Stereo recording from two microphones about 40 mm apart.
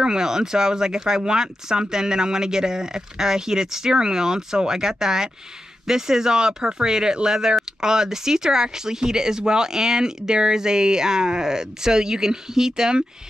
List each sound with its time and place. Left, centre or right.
0.0 s speech: centre